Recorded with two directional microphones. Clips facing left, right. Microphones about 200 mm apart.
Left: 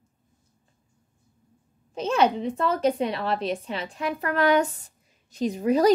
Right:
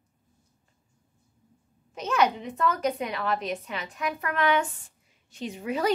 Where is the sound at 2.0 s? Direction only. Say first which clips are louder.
Left 3 dB; 30° left (ahead or behind).